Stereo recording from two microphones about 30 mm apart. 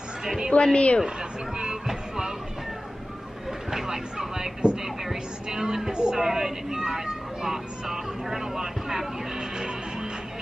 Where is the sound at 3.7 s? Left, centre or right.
Centre.